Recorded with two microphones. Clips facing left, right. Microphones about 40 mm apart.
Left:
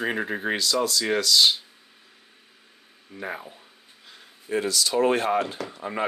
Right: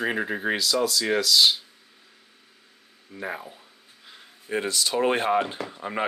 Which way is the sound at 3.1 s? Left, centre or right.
Centre.